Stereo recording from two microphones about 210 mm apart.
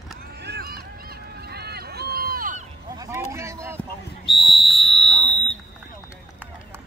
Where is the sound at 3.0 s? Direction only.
15° right (ahead or behind).